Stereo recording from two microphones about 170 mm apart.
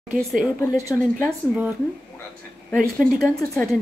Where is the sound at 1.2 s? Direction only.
5° right (ahead or behind).